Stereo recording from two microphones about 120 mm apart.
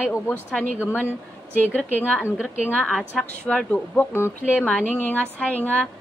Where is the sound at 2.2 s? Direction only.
10° right (ahead or behind).